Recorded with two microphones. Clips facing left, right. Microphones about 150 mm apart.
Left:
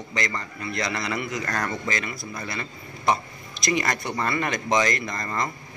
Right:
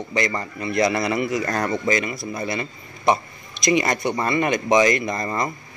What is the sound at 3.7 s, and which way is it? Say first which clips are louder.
Speech: right 5 dB; 20° right (ahead or behind).